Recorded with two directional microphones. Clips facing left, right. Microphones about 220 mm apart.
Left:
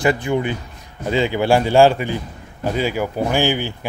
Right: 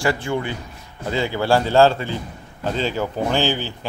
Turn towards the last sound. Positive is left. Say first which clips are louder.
# left 2 dB
turn(degrees=15)  # may be behind; listen again after turning